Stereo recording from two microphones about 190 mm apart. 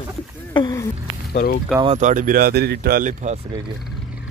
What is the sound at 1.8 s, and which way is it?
Speech, 30° right (ahead or behind).